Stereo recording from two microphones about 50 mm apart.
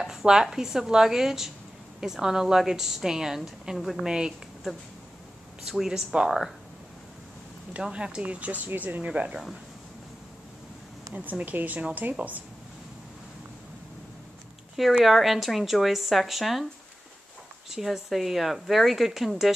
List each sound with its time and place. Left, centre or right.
0.0 s a woman's voice: centre
5.6 s a woman's voice: centre
7.9 s speech: right
9.3 s a woman's voice: centre
11.1 s speech: right
15.0 s a woman's voice: centre
17.6 s a woman's voice: centre